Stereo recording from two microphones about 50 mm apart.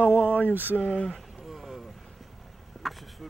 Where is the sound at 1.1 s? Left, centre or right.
Centre.